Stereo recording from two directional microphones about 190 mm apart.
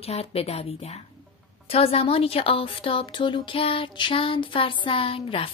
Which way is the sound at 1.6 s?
30° left (ahead or behind).